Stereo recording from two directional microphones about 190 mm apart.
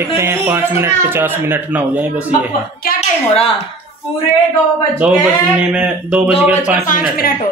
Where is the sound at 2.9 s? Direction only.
35° left (ahead or behind).